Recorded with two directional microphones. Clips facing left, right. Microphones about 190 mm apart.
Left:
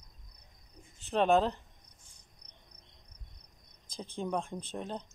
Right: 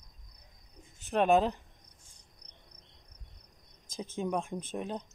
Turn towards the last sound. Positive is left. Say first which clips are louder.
# right 2 dB
turn(degrees=-15)  # may be behind; listen again after turning